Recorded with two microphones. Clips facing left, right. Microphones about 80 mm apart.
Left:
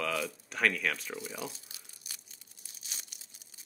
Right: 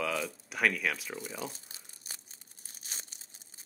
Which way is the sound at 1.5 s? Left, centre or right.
Right.